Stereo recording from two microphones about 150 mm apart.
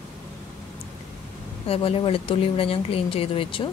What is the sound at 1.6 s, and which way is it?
Speech, 40° left (ahead or behind).